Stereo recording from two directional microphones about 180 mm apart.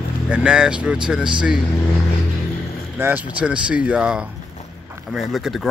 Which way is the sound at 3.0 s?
10° right (ahead or behind).